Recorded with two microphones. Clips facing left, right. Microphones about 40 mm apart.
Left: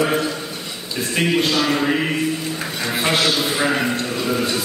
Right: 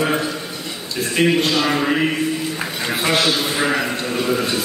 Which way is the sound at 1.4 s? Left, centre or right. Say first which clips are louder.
Even; centre.